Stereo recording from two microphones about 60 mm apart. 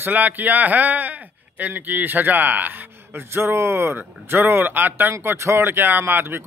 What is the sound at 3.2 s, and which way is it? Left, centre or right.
Speech, right.